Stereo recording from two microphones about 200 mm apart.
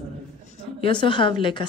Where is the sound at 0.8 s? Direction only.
25° left (ahead or behind).